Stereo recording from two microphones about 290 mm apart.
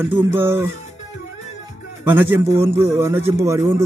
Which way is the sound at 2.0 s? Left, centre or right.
Centre.